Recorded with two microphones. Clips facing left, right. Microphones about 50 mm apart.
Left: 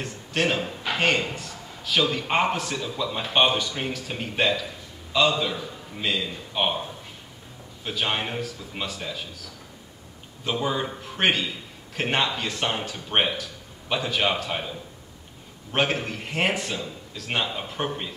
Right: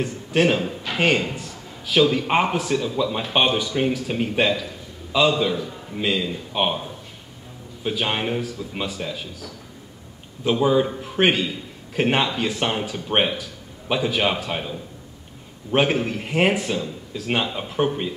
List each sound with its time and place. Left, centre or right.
0.0 s a man's voice: centre